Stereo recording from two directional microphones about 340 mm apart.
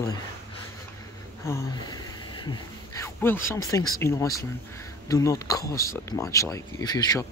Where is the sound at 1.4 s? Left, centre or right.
Centre.